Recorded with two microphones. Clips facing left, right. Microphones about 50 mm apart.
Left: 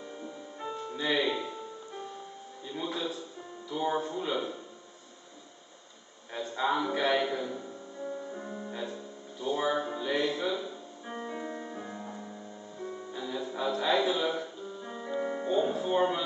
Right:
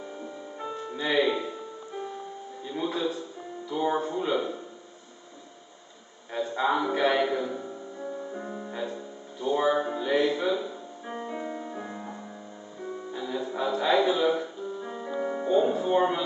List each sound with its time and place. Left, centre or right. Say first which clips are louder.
0.2 s music: right 2 dB; centre
2.6 s speech: right 5 dB; centre
6.3 s music: right 4 dB; centre
16.0 s speech: right 3 dB; centre